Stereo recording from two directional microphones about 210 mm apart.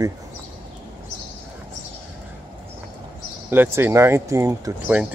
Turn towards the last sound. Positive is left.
turn(degrees=-10)  # may be behind; listen again after turning